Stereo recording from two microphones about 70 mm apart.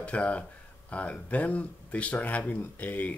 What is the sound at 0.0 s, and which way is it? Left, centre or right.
Speech, centre.